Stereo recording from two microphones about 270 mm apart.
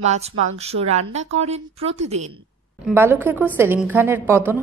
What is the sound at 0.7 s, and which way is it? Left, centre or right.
A woman's voice, right.